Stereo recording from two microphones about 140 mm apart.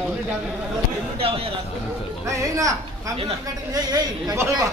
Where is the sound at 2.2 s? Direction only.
20° right (ahead or behind).